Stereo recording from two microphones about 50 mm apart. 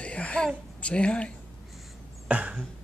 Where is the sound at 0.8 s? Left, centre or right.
Left.